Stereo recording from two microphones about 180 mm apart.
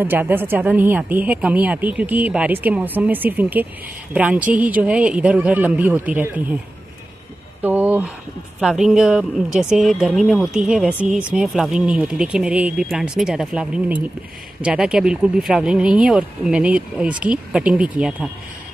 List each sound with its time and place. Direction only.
0.0 s speech: 10° right (ahead or behind)
7.6 s a sound: 10° right (ahead or behind)
8.5 s speech: 5° right (ahead or behind)